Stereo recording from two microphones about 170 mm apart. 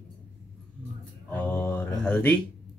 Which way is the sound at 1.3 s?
10° left (ahead or behind).